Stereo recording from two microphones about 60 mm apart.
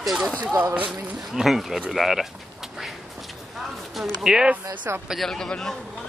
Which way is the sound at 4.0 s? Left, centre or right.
Centre.